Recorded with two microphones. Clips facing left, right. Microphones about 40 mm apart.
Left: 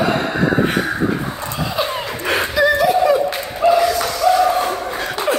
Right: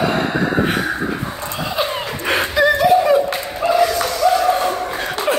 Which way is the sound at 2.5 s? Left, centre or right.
Right.